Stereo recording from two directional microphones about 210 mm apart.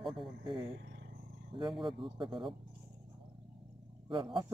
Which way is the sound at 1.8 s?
25° right (ahead or behind).